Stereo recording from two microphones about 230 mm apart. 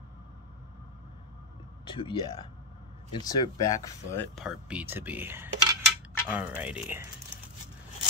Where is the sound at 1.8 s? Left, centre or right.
Left.